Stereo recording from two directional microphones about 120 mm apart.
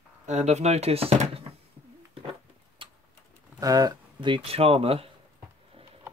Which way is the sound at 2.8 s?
45° right (ahead or behind).